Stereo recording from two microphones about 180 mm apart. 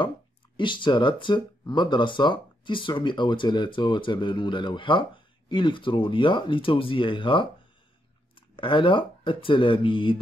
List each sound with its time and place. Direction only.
0.6 s speech: 25° left (ahead or behind)